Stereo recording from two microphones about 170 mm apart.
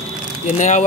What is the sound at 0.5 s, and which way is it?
Speech, 45° left (ahead or behind).